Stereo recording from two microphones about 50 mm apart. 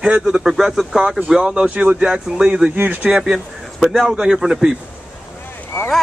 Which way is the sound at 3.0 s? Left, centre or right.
Centre.